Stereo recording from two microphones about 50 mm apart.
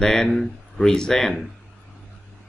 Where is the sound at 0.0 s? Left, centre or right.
Centre.